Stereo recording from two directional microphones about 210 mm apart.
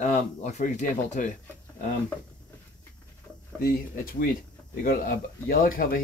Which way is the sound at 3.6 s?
45° left (ahead or behind).